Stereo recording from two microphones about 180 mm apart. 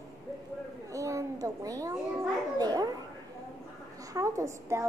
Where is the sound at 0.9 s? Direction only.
20° right (ahead or behind).